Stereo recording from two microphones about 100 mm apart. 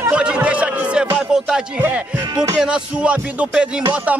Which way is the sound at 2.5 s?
10° right (ahead or behind).